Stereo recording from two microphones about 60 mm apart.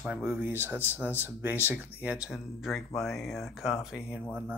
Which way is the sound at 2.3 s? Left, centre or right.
Centre.